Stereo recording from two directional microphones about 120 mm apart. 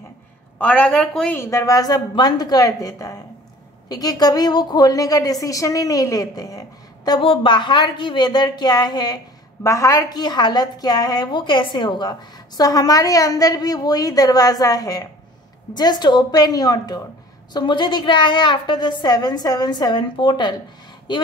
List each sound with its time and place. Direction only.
0.6 s a woman's voice: 10° left (ahead or behind)
1.3 s speech: 25° left (ahead or behind)
7.1 s speech: 45° left (ahead or behind)